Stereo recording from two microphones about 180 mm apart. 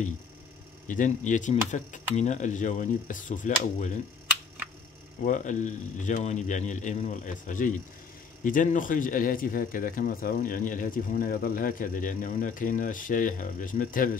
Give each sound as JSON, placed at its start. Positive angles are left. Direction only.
{"t": 0.8, "sound": "speech", "side_deg": 45}
{"t": 5.2, "sound": "speech", "side_deg": 45}